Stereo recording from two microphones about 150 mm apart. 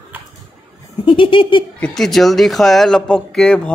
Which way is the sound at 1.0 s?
35° left (ahead or behind).